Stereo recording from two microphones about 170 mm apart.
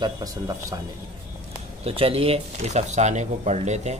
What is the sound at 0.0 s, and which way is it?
Speech, 20° right (ahead or behind).